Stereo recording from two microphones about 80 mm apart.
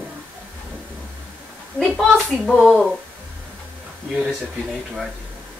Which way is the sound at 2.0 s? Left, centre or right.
Centre.